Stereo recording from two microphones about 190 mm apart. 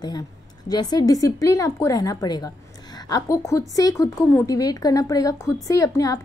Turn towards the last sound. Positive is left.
turn(degrees=20)  # may be behind; listen again after turning